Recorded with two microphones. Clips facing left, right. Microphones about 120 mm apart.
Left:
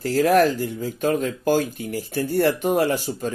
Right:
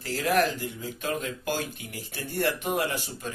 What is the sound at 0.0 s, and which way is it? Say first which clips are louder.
Speech: left 8 dB; 40° left (ahead or behind).